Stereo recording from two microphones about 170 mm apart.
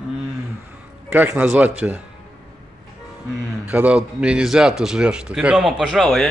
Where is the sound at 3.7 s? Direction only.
5° right (ahead or behind).